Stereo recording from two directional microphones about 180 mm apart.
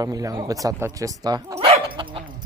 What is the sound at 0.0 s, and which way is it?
Speech, 20° right (ahead or behind).